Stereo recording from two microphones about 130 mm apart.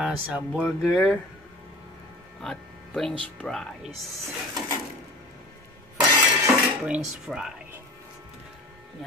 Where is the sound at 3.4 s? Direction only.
5° left (ahead or behind).